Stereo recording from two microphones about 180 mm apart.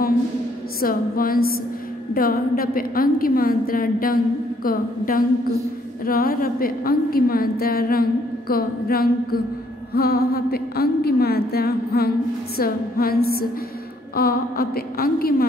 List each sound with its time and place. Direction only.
0.7 s a woman's voice: 55° left (ahead or behind)